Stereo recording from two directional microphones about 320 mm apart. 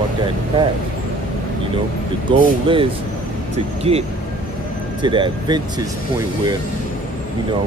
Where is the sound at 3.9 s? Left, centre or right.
Centre.